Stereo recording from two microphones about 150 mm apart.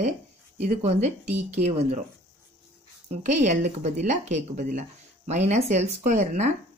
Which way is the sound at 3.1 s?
50° right (ahead or behind).